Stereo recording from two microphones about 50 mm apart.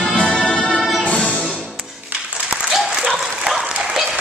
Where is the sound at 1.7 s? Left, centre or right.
Right.